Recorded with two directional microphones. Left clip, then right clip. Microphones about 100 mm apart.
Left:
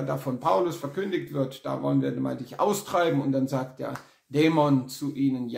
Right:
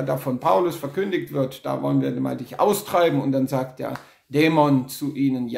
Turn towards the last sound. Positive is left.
turn(degrees=-30)  # may be behind; listen again after turning